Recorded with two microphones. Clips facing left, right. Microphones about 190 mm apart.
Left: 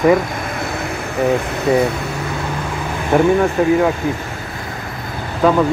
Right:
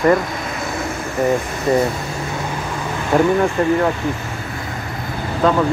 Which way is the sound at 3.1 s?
5° left (ahead or behind).